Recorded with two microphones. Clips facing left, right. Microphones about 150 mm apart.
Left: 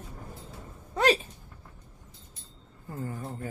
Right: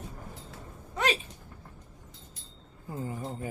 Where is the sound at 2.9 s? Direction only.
15° right (ahead or behind).